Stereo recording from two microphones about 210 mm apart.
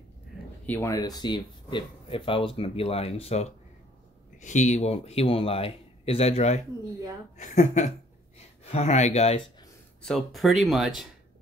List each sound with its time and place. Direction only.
0.7 s speech: 10° left (ahead or behind); by 9.4 s 30° left (ahead or behind)
10.0 s speech: centre (ahead or behind)